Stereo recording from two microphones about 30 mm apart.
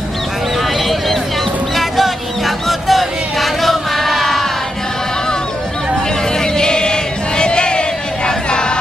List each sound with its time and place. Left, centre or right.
1.8 s a sound: centre
6.4 s chant: left
8.3 s music: left